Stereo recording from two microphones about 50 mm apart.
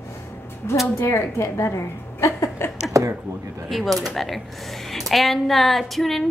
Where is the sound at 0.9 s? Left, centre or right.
Left.